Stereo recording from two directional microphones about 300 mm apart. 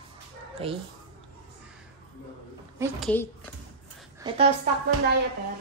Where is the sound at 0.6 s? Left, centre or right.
Centre.